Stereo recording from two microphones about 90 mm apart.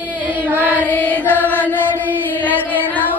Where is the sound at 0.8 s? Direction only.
20° left (ahead or behind).